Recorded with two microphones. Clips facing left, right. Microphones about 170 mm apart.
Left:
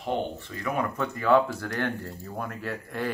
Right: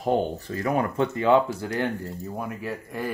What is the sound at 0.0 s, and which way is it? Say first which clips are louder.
Speech: right 5 dB; 40° right (ahead or behind).